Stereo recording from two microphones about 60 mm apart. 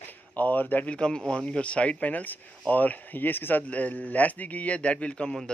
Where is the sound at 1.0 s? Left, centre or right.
Centre.